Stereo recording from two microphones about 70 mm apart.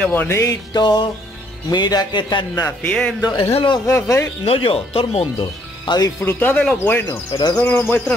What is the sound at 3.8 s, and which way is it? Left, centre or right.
Speech, left.